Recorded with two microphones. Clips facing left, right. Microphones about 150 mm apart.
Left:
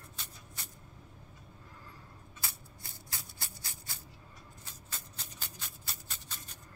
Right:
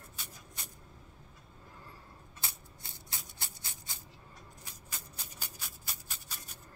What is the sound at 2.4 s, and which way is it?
Shuffling cards, 20° right (ahead or behind).